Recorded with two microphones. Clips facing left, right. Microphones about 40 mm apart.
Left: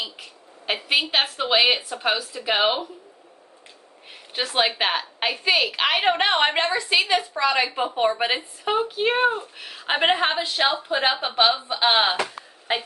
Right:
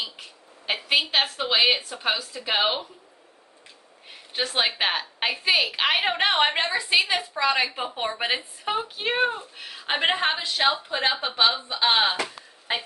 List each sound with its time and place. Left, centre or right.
0.2 s a woman's voice: centre
4.3 s a woman's voice: centre